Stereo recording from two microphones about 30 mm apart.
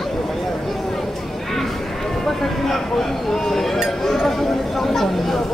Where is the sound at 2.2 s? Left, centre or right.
Centre.